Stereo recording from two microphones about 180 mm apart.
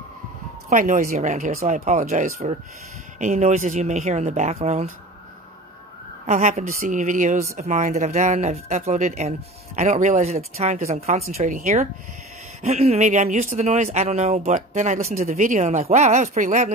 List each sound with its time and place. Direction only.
0.7 s speech: 45° right (ahead or behind)
6.2 s a woman's voice: 40° right (ahead or behind)